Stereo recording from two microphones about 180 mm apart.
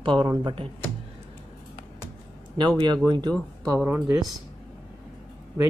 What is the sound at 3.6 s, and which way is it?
Speech, 10° right (ahead or behind).